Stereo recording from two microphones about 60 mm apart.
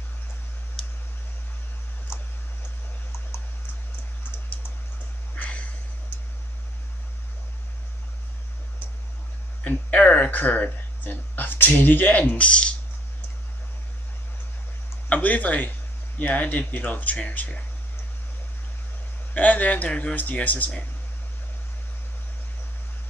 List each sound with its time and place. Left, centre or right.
5.3 s a sound: left
9.6 s speech: left
15.0 s speech: left
19.3 s speech: left